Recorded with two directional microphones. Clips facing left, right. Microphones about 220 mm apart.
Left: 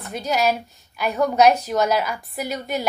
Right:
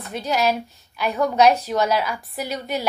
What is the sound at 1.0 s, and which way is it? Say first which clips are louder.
Speech: left 1 dB; centre (ahead or behind).